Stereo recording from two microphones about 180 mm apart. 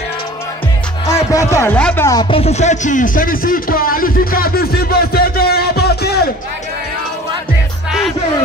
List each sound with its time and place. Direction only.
1.0 s speech: 15° left (ahead or behind)
2.0 s speech: 25° left (ahead or behind); by 6.3 s 60° left (ahead or behind)